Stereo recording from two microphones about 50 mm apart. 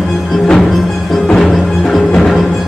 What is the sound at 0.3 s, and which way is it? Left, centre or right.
Music, centre.